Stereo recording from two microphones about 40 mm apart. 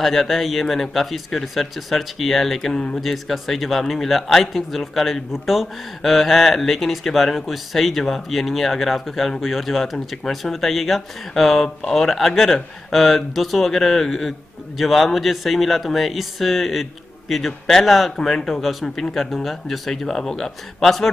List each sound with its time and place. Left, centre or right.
0.0 s a man's voice: centre
2.7 s speech: left
3.0 s a man's voice: centre